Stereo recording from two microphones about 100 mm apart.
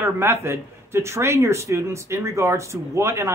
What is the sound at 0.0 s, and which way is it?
Speech, 25° right (ahead or behind).